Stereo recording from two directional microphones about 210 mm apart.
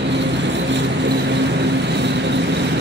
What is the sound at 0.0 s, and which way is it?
Vehicle, 55° right (ahead or behind).